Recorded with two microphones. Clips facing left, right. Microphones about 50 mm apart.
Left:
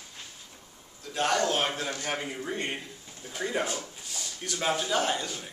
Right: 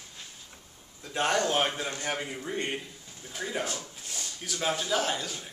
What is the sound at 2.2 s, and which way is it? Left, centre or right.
Speech, centre.